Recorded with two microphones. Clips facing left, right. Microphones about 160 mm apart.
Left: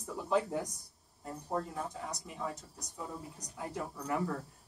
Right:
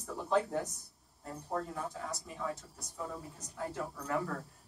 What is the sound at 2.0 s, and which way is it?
Speech, 15° left (ahead or behind).